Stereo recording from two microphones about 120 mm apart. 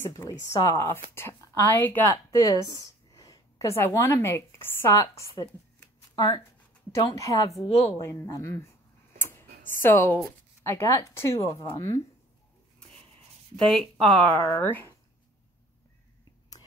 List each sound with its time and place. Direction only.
0.0 s a woman's voice: 25° left (ahead or behind)
2.1 s a woman's voice: 30° left (ahead or behind)
2.8 s a sound: 30° left (ahead or behind)
4.9 s a woman's voice: 25° left (ahead or behind)
7.1 s a woman's voice: 25° left (ahead or behind)
7.6 s speech: 55° left (ahead or behind)
8.0 s a woman's voice: 25° left (ahead or behind)
9.2 s tick: 20° left (ahead or behind)
9.8 s a woman's voice: 20° left (ahead or behind)
13.6 s speech: 5° left (ahead or behind)